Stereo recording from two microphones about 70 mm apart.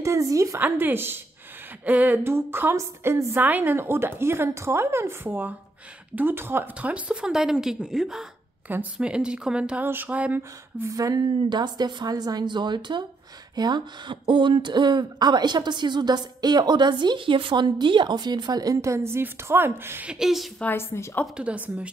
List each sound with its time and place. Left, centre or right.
0.0 s a woman's voice: right
0.6 s speech: right
2.2 s a woman's voice: right
3.3 s speech: right
6.8 s a woman's voice: centre
10.9 s a woman's voice: right
20.1 s speech: centre
20.7 s a woman's voice: left
21.4 s a woman's voice: centre